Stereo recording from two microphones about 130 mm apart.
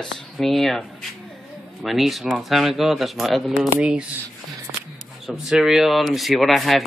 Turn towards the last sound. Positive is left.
turn(degrees=0)  # may be behind; listen again after turning